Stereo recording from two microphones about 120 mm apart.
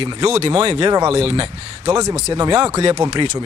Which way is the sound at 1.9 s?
30° right (ahead or behind).